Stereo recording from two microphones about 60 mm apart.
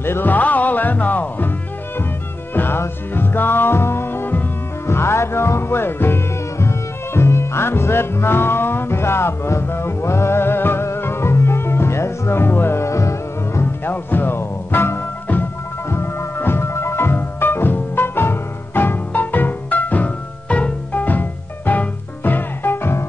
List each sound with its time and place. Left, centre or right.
0.0 s music: left
2.5 s music: left
4.8 s music: left
13.6 s music: left